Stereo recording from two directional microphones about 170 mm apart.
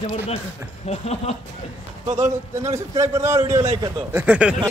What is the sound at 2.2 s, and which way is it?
A man's voice, 20° right (ahead or behind).